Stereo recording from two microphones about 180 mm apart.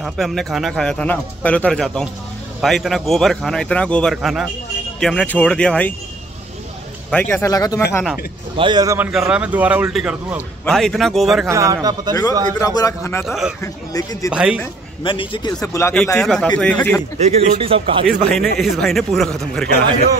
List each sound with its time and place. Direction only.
0.0 s speech: centre (ahead or behind)
7.1 s speech: 5° left (ahead or behind)
8.5 s speech: 25° right (ahead or behind)
9.1 s speech: 5° right (ahead or behind)
11.4 s speech: 15° right (ahead or behind)
12.5 s a man's voice: 20° left (ahead or behind)
13.2 s speech: centre (ahead or behind)
13.6 s speech: 20° left (ahead or behind)
14.3 s speech: 5° right (ahead or behind)
15.0 s a man's voice: 25° left (ahead or behind)
15.6 s speech: 15° left (ahead or behind)
17.2 s speech: 35° right (ahead or behind)
18.0 s speech: centre (ahead or behind)